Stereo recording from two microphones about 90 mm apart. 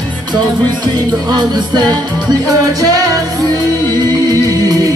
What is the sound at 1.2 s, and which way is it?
Music, 50° right (ahead or behind).